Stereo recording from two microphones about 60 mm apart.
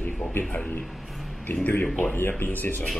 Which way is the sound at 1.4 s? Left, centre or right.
Left.